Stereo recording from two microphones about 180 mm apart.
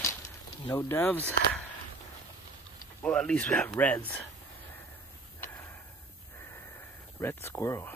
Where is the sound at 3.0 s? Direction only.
5° left (ahead or behind).